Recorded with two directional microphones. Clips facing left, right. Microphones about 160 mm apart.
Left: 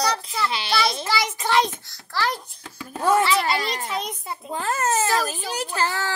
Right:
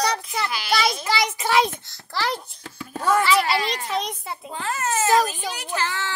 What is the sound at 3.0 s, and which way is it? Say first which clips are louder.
Speech: left 1 dB; 25° left (ahead or behind).